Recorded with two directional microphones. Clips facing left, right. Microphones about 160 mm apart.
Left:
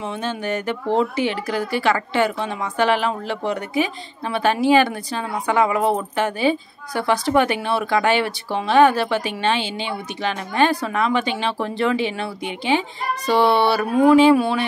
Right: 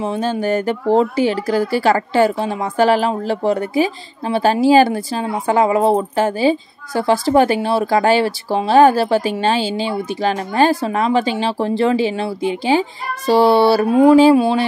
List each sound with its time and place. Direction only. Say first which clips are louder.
0.0 s speech: right 7 dB; 35° right (ahead or behind)